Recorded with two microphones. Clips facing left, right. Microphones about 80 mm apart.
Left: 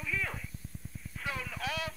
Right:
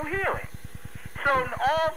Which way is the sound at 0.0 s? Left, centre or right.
Right.